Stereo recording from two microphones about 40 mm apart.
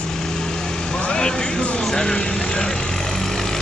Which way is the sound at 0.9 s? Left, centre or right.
Left.